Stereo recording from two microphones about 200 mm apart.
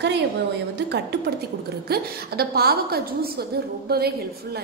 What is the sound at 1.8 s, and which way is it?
A woman's voice, 50° right (ahead or behind).